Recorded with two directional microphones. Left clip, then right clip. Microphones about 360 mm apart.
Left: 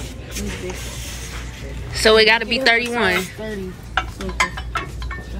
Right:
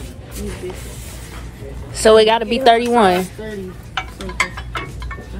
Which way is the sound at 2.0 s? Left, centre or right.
Centre.